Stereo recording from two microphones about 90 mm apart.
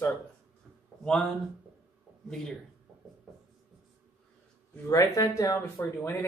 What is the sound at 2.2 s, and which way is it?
Speech, 5° left (ahead or behind).